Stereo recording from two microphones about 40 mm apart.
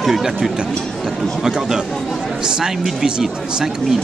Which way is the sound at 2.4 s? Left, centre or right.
Centre.